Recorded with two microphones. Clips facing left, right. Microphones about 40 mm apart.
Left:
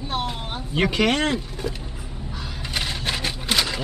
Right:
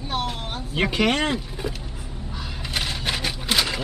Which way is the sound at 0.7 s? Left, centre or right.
Centre.